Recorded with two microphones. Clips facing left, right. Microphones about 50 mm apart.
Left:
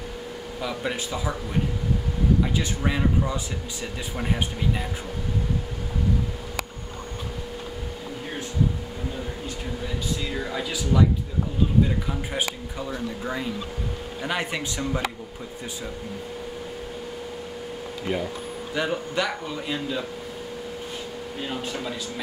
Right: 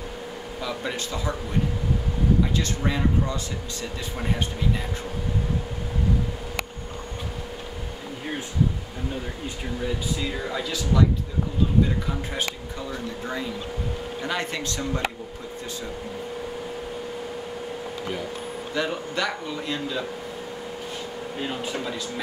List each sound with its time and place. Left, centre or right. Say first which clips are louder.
0.6 s a man's voice: left 1 dB; centre
2.5 s a man's voice: even; centre
10.2 s a man's voice: even; centre
12.4 s a man's voice: left 1 dB; centre
18.8 s a man's voice: left 1 dB; centre
21.4 s speech: right 1 dB; centre